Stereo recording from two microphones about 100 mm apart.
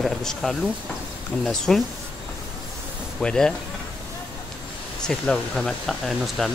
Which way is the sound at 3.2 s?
10° left (ahead or behind).